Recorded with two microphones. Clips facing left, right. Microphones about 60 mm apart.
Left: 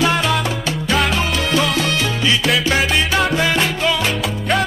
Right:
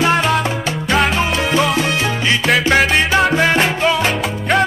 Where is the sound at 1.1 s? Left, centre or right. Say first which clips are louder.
Right 2 dB; centre.